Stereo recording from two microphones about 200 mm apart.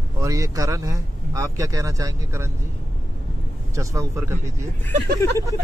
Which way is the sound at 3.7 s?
15° right (ahead or behind).